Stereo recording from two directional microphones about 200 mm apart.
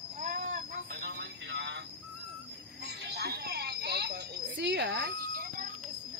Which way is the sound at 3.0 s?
55° right (ahead or behind).